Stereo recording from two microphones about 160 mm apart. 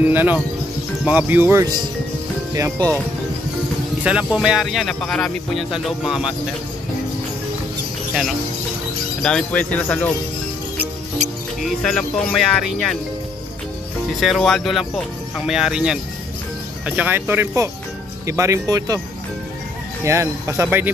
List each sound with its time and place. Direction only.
0.0 s speech: 10° right (ahead or behind)
4.0 s speech: 5° right (ahead or behind)
9.2 s speech: 5° left (ahead or behind)
11.6 s speech: 5° left (ahead or behind)
14.2 s speech: centre (ahead or behind); by 18.9 s 20° right (ahead or behind)
20.1 s speech: 20° right (ahead or behind)